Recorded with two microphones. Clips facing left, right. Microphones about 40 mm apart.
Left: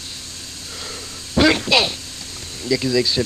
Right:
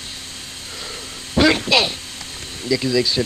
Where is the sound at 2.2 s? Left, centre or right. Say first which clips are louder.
Right 1 dB; right.